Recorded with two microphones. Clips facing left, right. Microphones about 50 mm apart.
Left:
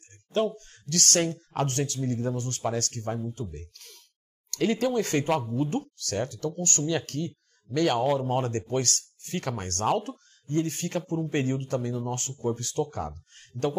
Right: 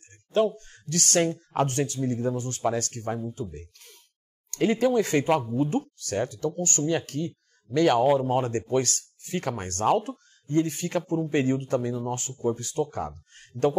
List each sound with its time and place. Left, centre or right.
0.3 s speech: centre
8.0 s speech: centre
8.5 s speech: right